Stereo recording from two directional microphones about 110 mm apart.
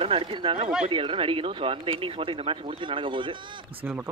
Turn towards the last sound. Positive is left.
turn(degrees=-15)  # may be behind; listen again after turning